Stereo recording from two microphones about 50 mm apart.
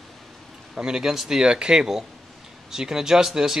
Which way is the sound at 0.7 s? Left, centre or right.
Centre.